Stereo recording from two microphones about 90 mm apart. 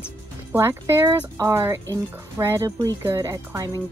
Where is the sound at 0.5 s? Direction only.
30° right (ahead or behind).